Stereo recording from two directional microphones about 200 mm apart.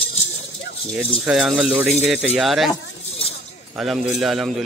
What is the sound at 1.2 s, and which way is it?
Speech, centre (ahead or behind).